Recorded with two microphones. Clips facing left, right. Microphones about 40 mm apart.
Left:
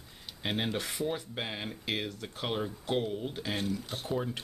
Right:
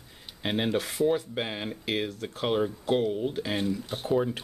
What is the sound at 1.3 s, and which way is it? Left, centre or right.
Speech, right.